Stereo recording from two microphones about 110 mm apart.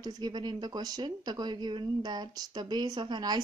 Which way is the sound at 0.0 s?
40° right (ahead or behind).